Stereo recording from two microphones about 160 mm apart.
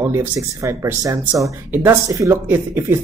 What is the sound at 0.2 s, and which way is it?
A man's voice, 15° right (ahead or behind).